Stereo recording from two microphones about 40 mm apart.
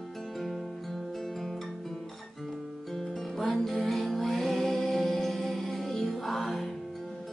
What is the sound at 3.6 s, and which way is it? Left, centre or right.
Music, centre.